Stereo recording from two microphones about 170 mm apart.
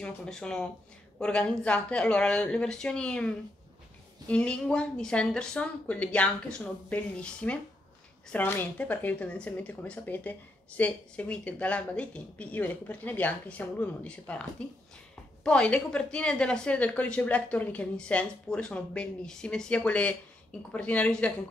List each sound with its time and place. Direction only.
0.0 s a woman's voice: 5° left (ahead or behind)
15.4 s a woman's voice: 5° left (ahead or behind)